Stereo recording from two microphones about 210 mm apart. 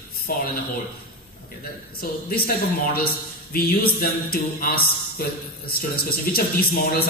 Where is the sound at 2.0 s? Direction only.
45° left (ahead or behind).